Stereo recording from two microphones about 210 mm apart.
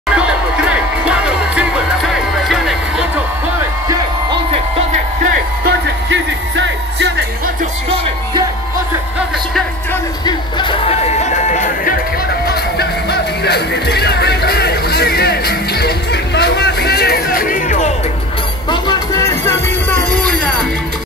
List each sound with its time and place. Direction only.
0.1 s music: 5° right (ahead or behind)
5.7 s music: 60° right (ahead or behind)
10.2 s music: 20° left (ahead or behind)
12.4 s music: 50° left (ahead or behind)
18.7 s music: 20° left (ahead or behind)